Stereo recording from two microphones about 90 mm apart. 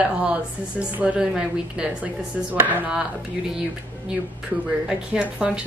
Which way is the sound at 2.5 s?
20° right (ahead or behind).